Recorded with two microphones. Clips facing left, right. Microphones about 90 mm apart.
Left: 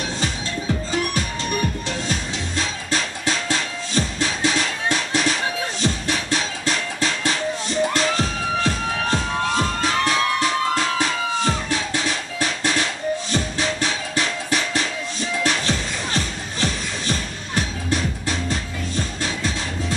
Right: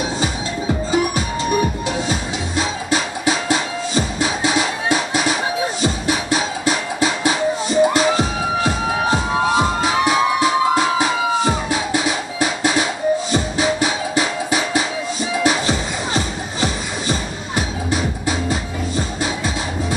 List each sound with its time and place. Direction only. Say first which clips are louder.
0.2 s music: right 4 dB; 10° right (ahead or behind)